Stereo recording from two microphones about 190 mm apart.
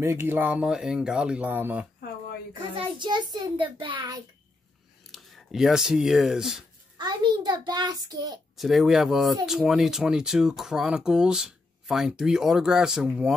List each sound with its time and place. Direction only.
0.0 s speech: 15° right (ahead or behind)
2.7 s a child's voice: 25° right (ahead or behind)
5.1 s speech: centre (ahead or behind)
7.0 s a child's voice: 20° right (ahead or behind)
8.5 s speech: centre (ahead or behind)